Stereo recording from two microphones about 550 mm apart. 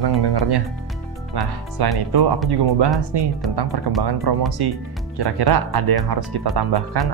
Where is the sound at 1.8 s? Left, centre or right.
Right.